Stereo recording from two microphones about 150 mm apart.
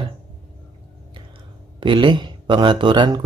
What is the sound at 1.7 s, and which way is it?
Speech, 35° right (ahead or behind).